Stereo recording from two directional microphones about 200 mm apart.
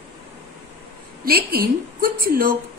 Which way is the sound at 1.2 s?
45° right (ahead or behind).